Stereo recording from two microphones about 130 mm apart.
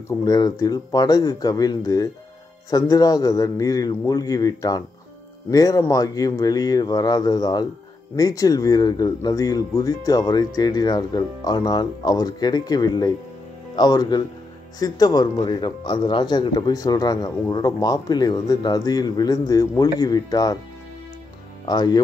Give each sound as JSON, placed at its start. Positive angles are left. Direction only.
{"t": 0.2, "sound": "speech", "side_deg": 30}
{"t": 21.6, "sound": "speech", "side_deg": 30}